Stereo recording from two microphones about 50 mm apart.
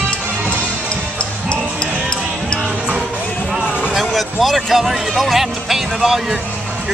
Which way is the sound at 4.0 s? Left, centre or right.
Centre.